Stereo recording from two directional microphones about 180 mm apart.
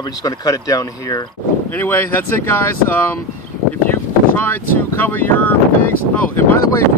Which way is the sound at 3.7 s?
10° left (ahead or behind).